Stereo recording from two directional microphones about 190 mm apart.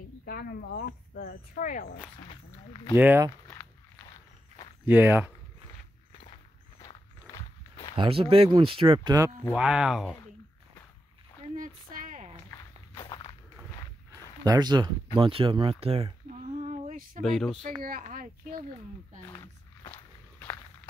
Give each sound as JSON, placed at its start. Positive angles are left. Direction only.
{"t": 0.2, "sound": "speech", "side_deg": 50}
{"t": 2.2, "sound": "speech", "side_deg": 25}
{"t": 3.0, "sound": "speech", "side_deg": -10}
{"t": 4.8, "sound": "speech", "side_deg": -10}
{"t": 7.3, "sound": "walk", "side_deg": 20}
{"t": 7.9, "sound": "speech", "side_deg": -30}
{"t": 9.5, "sound": "speech", "side_deg": -5}
{"t": 11.5, "sound": "a sound", "side_deg": -45}
{"t": 12.9, "sound": "walk", "side_deg": 20}
{"t": 14.4, "sound": "speech", "side_deg": -20}
{"t": 16.5, "sound": "a sound", "side_deg": -35}
{"t": 17.2, "sound": "speech", "side_deg": 0}
{"t": 17.8, "sound": "speech", "side_deg": -50}
{"t": 19.3, "sound": "a sound", "side_deg": 25}